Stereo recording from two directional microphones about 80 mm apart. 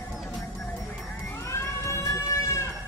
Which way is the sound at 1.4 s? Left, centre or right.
Left.